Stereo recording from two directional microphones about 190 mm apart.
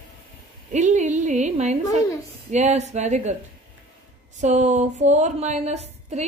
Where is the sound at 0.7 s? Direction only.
40° right (ahead or behind).